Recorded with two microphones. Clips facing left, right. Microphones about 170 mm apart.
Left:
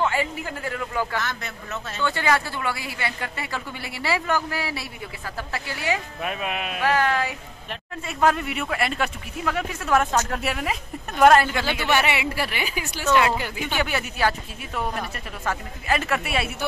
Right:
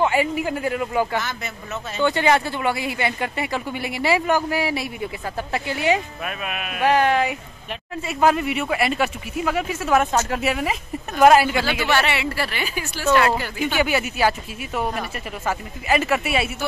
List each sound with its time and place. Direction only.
0.0 s a man's voice: 15° right (ahead or behind)
6.2 s speech: 25° left (ahead or behind)
6.8 s speech: 20° right (ahead or behind)
8.1 s speech: 5° right (ahead or behind)
11.9 s speech: 15° left (ahead or behind)
13.7 s speech: 5° right (ahead or behind)